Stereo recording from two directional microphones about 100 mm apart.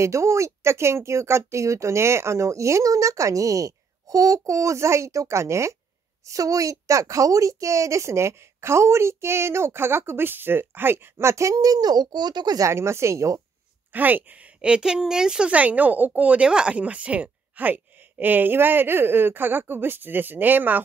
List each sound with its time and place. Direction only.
0.0 s a woman's voice: 30° right (ahead or behind)
12.6 s a woman's voice: 30° right (ahead or behind)
13.9 s speech: 15° right (ahead or behind)